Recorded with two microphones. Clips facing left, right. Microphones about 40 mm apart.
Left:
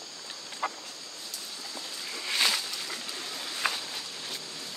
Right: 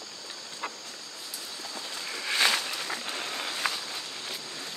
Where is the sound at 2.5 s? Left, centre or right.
Right.